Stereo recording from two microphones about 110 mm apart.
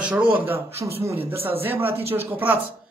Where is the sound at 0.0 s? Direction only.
15° right (ahead or behind).